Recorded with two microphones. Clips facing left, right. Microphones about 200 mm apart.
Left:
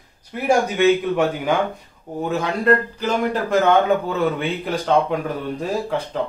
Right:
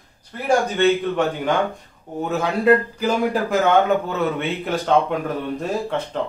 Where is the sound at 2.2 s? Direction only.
Centre (ahead or behind).